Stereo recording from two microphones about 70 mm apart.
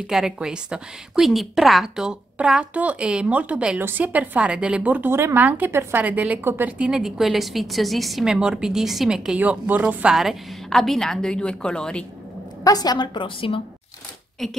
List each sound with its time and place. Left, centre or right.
0.0 s a woman's voice: centre
2.7 s a woman's voice: centre
5.1 s a woman's voice: right
5.4 s a woman's voice: right
5.7 s a woman's voice: right
6.0 s a woman's voice: right
6.8 s a woman's voice: centre
9.4 s a woman's voice: right
10.0 s a woman's voice: centre
12.6 s a woman's voice: left
14.4 s a woman's voice: centre